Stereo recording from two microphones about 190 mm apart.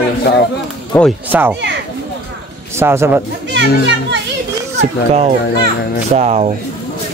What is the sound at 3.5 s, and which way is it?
Speech, 65° right (ahead or behind).